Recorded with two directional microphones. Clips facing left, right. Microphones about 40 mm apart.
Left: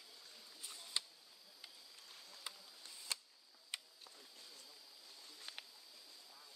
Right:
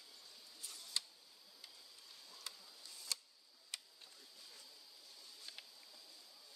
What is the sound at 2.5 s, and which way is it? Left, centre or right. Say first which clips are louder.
Insect: left 2 dB; centre.